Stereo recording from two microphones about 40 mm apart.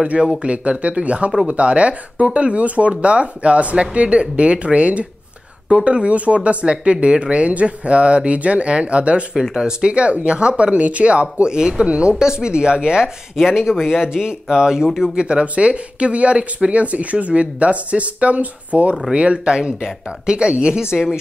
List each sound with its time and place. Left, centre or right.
0.1 s speech: right
9.3 s speech: centre
15.1 s speech: right